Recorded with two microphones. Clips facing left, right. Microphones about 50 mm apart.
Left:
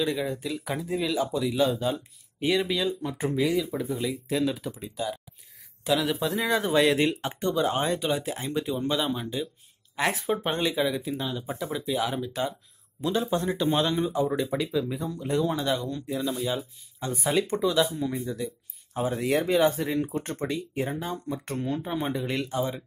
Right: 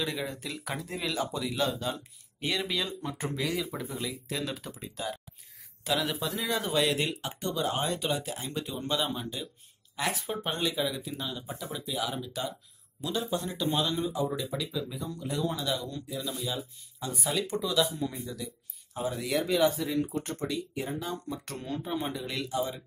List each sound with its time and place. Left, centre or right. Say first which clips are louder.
0.0 s speech: left 6 dB; centre
4.1 s speech: left 8 dB; centre
4.6 s speech: left 6 dB; centre
6.5 s speech: left 5 dB; left
8.5 s speech: left 6 dB; centre
9.9 s speech: left 5 dB; left
10.2 s speech: left 5 dB; centre
11.9 s speech: left 5 dB; left
17.9 s speech: left 5 dB; centre
18.9 s speech: left 5 dB; left
22.2 s speech: left 4 dB; left